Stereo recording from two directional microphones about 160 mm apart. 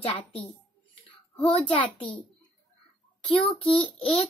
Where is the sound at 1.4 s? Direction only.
35° left (ahead or behind).